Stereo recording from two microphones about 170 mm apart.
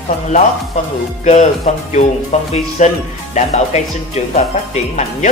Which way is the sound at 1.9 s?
45° left (ahead or behind).